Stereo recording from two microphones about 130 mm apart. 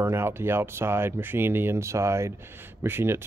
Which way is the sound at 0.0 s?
20° right (ahead or behind).